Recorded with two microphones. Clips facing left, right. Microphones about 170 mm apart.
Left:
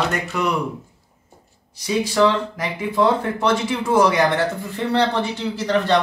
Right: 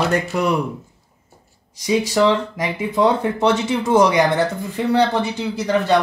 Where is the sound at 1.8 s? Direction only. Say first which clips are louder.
Right 2 dB; 15° right (ahead or behind).